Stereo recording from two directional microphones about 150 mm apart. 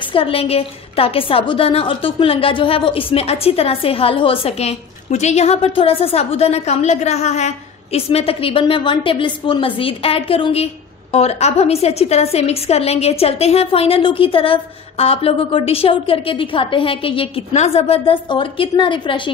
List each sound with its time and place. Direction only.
0.1 s speech: 40° left (ahead or behind)